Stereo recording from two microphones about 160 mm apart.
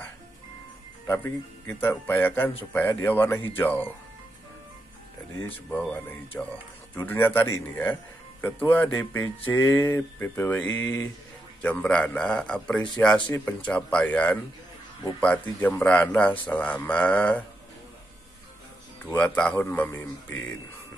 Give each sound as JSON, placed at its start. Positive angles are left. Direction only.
{"t": 1.0, "sound": "speech", "side_deg": 15}
{"t": 5.7, "sound": "speech", "side_deg": 10}
{"t": 19.0, "sound": "speech", "side_deg": 10}